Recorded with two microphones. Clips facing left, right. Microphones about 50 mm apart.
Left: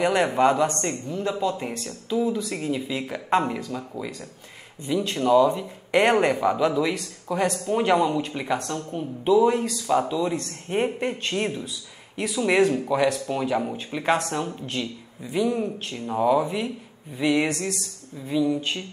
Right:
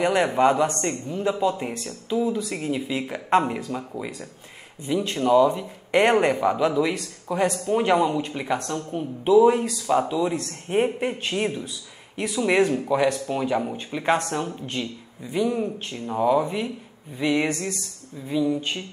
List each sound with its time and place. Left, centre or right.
0.0 s speech: centre
4.8 s speech: centre